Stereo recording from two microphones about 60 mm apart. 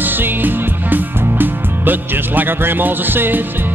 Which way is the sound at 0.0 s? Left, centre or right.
Right.